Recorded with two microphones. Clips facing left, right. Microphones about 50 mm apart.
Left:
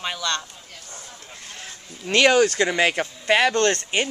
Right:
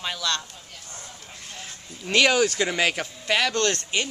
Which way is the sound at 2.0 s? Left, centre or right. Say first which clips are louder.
Left 3 dB; centre.